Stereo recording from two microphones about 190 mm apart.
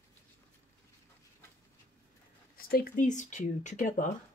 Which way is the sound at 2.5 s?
50° left (ahead or behind).